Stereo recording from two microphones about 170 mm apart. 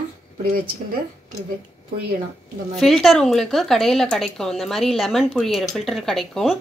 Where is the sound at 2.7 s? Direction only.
Centre (ahead or behind).